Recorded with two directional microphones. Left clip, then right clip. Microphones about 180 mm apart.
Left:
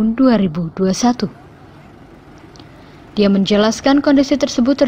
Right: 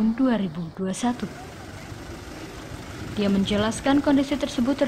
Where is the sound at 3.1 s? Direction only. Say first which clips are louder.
Left 10 dB; 25° left (ahead or behind).